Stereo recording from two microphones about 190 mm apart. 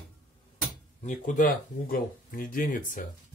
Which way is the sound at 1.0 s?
40° left (ahead or behind).